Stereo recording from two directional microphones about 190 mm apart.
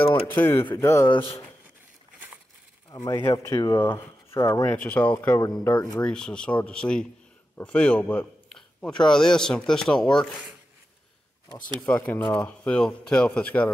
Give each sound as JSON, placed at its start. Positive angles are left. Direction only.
{"t": 0.1, "sound": "speech", "side_deg": 10}
{"t": 1.1, "sound": "speech", "side_deg": 30}
{"t": 2.9, "sound": "speech", "side_deg": 15}
{"t": 11.9, "sound": "speech", "side_deg": 10}